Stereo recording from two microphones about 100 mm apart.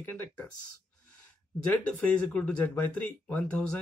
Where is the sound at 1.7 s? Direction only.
10° left (ahead or behind).